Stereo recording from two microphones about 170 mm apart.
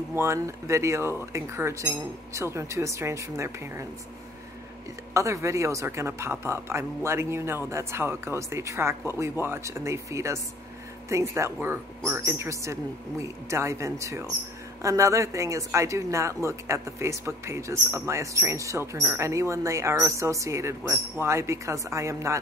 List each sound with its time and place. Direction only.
0.1 s speech: 15° right (ahead or behind)
5.1 s speech: 15° right (ahead or behind)